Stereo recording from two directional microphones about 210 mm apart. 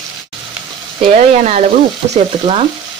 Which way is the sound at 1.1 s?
35° right (ahead or behind).